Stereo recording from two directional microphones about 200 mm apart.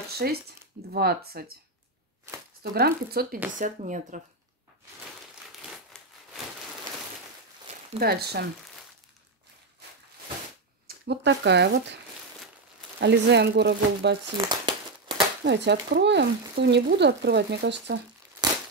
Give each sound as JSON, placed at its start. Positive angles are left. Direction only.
{"t": 0.2, "sound": "speech", "side_deg": -50}
{"t": 2.6, "sound": "speech", "side_deg": -50}
{"t": 3.5, "sound": "speech", "side_deg": -40}
{"t": 5.6, "sound": "a sound", "side_deg": 0}
{"t": 8.0, "sound": "speech", "side_deg": -50}
{"t": 10.9, "sound": "speech", "side_deg": -60}
{"t": 13.0, "sound": "speech", "side_deg": -60}
{"t": 14.2, "sound": "crumpling", "side_deg": -20}
{"t": 15.4, "sound": "speech", "side_deg": -60}